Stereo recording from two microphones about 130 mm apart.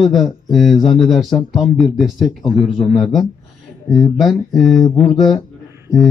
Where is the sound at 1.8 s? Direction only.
Centre (ahead or behind).